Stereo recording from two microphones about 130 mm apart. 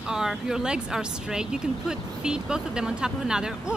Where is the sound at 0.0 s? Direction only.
5° right (ahead or behind).